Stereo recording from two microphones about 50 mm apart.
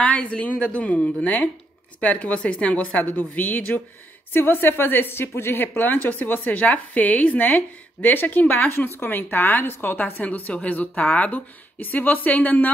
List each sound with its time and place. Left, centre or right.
0.0 s a woman's voice: left
8.6 s a woman's voice: left